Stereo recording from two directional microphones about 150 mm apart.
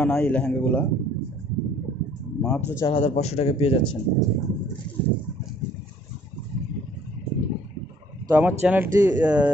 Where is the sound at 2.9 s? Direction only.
45° left (ahead or behind).